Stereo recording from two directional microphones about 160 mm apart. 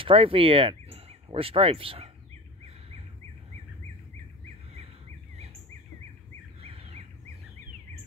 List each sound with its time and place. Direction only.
0.0 s speech: 35° right (ahead or behind)
6.6 s bird: 35° right (ahead or behind)